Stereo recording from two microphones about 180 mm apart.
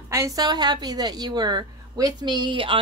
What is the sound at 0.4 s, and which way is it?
A woman's voice, 20° right (ahead or behind).